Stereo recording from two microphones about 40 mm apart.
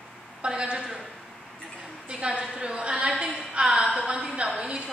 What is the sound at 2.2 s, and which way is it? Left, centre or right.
A woman's voice, right.